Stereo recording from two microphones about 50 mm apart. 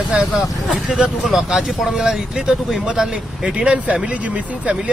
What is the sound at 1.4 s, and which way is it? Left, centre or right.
Speech, centre.